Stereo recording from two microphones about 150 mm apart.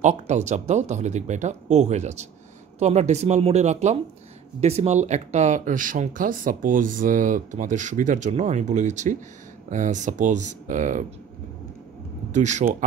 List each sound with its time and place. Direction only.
0.0 s speech: 50° right (ahead or behind)
12.3 s speech: 50° right (ahead or behind)